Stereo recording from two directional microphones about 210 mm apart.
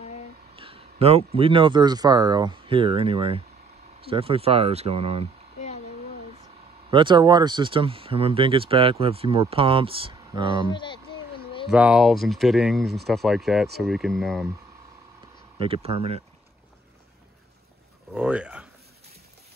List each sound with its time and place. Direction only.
0.6 s speech: 25° right (ahead or behind)
6.9 s speech: 25° right (ahead or behind)
10.7 s speech: 20° left (ahead or behind)
11.7 s speech: 5° right (ahead or behind)
15.6 s speech: 25° right (ahead or behind)
18.1 s speech: 5° right (ahead or behind)